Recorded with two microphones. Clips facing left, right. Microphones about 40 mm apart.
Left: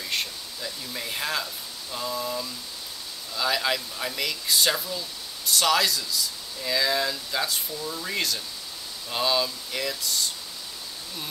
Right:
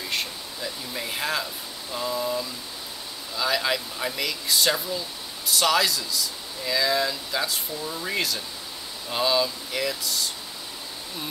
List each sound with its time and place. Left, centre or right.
0.1 s speech: centre